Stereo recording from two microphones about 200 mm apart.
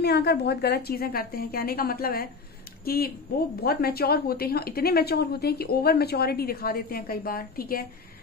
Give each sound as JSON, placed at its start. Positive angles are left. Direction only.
{"t": 0.0, "sound": "speech", "side_deg": 55}